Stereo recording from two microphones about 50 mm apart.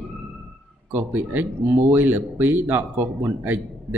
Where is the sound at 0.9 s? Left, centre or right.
Right.